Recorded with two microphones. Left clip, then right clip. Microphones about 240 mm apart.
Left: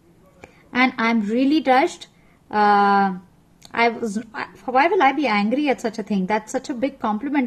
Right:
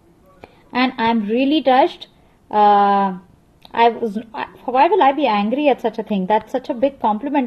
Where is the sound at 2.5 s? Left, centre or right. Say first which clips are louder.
Right 3 dB; left.